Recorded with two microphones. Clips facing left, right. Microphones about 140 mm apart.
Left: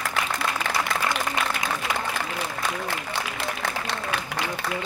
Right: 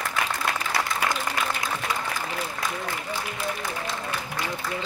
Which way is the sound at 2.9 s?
75° left (ahead or behind).